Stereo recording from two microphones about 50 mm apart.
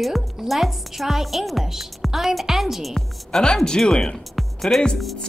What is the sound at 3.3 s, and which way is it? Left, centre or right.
Speech, centre.